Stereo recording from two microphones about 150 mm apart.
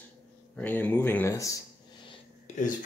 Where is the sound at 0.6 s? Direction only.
10° left (ahead or behind).